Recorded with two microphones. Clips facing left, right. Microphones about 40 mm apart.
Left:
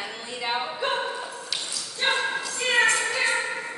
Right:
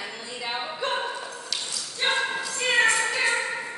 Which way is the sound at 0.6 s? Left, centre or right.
Centre.